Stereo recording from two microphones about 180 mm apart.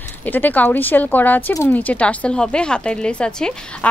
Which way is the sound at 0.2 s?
10° left (ahead or behind).